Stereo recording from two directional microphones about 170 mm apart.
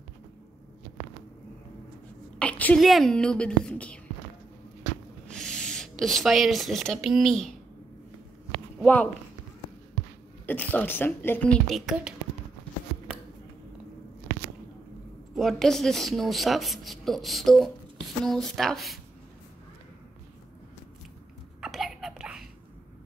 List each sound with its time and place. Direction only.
2.3 s a woman's voice: 5° left (ahead or behind)
5.3 s speech: 5° left (ahead or behind)
8.7 s speech: 5° left (ahead or behind)
10.4 s a woman's voice: 10° left (ahead or behind)
15.3 s a woman's voice: centre (ahead or behind)
21.5 s a sound: centre (ahead or behind)